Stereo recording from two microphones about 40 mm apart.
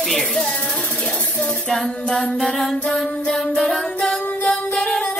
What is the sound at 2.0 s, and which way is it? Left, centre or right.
Music, centre.